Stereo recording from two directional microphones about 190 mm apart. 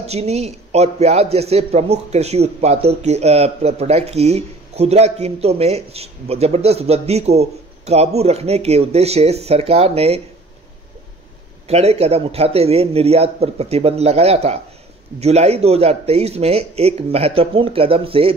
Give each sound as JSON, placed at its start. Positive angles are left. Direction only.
{"t": 0.0, "sound": "speech", "side_deg": -35}
{"t": 11.6, "sound": "speech", "side_deg": -35}